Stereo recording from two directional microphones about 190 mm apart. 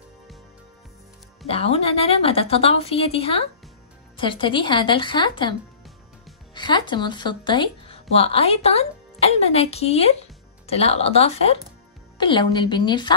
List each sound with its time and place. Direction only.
1.5 s a woman's voice: 30° left (ahead or behind)